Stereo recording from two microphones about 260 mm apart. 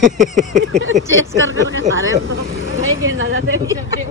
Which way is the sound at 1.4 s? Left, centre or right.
Right.